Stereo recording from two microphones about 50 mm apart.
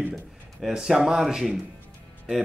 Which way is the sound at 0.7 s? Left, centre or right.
Centre.